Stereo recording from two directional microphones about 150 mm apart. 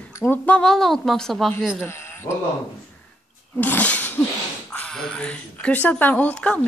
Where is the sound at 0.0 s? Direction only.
10° left (ahead or behind).